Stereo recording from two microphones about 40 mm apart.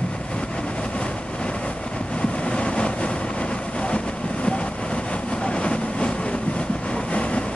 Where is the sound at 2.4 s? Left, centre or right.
Left.